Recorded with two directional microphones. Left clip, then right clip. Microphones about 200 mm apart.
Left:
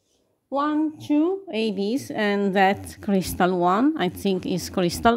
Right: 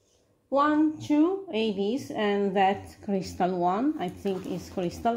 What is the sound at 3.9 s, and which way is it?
A woman's voice, 50° left (ahead or behind).